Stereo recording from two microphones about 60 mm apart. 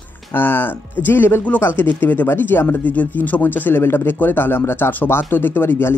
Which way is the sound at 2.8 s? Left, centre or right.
Left.